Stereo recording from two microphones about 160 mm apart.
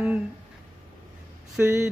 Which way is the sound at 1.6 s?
15° right (ahead or behind).